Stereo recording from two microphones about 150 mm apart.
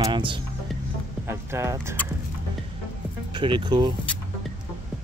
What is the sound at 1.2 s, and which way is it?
Speech, 20° right (ahead or behind).